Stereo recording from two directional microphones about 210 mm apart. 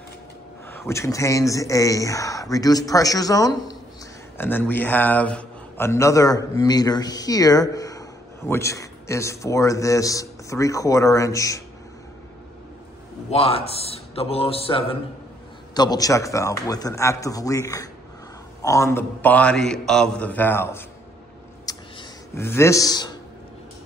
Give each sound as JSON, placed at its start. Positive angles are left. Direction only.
{"t": 0.7, "sound": "a man's voice", "side_deg": 10}
{"t": 13.3, "sound": "a man's voice", "side_deg": 30}
{"t": 21.7, "sound": "a sound", "side_deg": 20}
{"t": 22.3, "sound": "a man's voice", "side_deg": 10}